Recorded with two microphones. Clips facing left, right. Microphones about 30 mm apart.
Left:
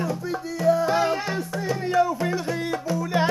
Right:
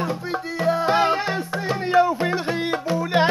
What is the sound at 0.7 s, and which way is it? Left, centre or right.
Music, right.